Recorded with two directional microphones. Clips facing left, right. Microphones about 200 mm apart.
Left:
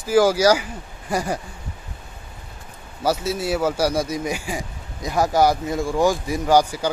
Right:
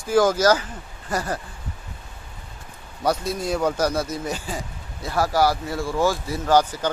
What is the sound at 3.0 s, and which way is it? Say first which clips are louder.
Speech: left 1 dB; 5° left (ahead or behind).